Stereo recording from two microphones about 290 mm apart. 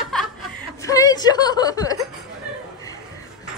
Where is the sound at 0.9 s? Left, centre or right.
Centre.